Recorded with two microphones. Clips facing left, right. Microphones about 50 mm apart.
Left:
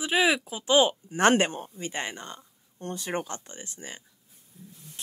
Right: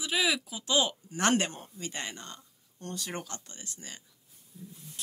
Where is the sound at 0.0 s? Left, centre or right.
Left.